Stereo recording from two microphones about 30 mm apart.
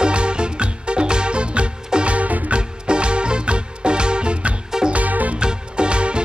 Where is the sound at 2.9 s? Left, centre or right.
Right.